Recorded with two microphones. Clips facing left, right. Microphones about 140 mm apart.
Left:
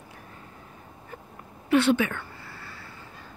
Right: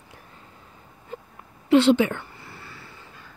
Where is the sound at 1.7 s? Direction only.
25° right (ahead or behind).